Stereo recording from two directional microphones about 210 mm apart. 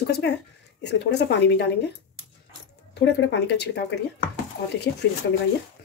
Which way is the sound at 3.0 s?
60° left (ahead or behind).